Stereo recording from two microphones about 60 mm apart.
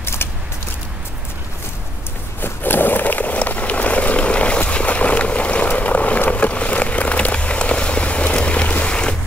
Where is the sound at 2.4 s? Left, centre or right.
Left; by 9.1 s centre.